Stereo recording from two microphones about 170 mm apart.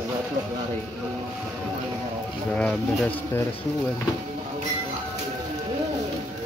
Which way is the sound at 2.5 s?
5° left (ahead or behind).